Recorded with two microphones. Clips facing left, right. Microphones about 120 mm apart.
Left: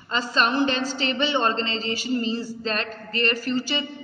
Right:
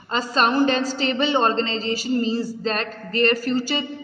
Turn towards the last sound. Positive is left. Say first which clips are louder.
# right 3 dB
turn(degrees=-40)  # may be behind; listen again after turning